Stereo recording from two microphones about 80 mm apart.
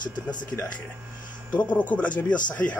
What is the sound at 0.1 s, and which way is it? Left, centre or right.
Speech, left.